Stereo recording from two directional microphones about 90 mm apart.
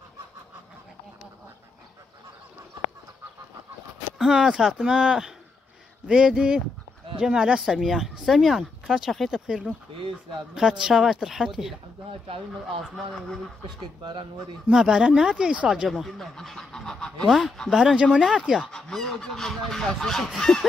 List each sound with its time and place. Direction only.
4.2 s speech: 5° right (ahead or behind)
12.1 s speech: 90° right
14.7 s speech: 5° right (ahead or behind)
15.9 s speech: 5° left (ahead or behind)
18.6 s speech: 10° left (ahead or behind)